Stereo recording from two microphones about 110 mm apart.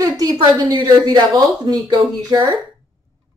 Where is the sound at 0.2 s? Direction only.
35° right (ahead or behind).